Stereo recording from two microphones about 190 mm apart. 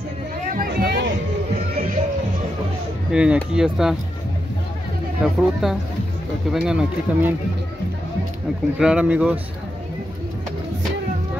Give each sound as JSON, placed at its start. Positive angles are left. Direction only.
{"t": 0.5, "sound": "a sound", "side_deg": -45}
{"t": 3.1, "sound": "speech", "side_deg": -5}
{"t": 5.2, "sound": "speech", "side_deg": 0}
{"t": 8.7, "sound": "speech", "side_deg": -5}